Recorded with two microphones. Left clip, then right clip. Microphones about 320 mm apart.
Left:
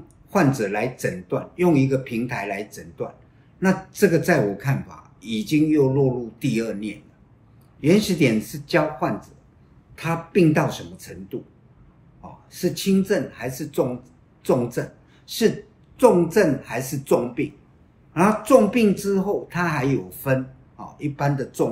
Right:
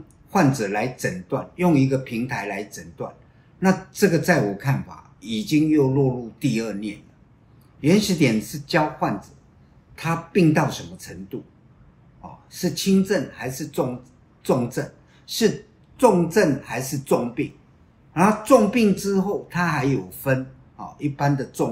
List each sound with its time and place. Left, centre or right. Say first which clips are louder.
0.3 s a man's voice: even; centre